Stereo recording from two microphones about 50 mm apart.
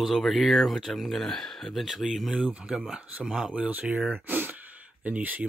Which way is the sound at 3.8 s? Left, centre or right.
Right.